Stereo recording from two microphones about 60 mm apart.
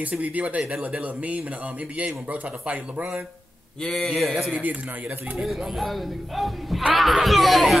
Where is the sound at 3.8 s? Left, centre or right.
Centre.